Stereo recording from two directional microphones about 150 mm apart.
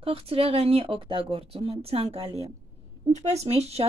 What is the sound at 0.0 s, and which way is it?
Speech, 40° right (ahead or behind).